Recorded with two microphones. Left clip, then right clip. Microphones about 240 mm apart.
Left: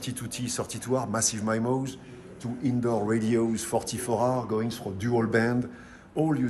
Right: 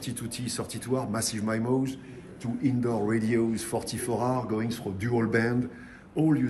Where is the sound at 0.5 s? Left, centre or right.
Left.